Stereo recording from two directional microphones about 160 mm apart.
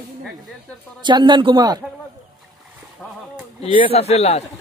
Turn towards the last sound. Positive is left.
turn(degrees=40)  # may be behind; listen again after turning